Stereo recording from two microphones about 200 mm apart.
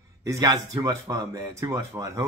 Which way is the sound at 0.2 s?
15° right (ahead or behind).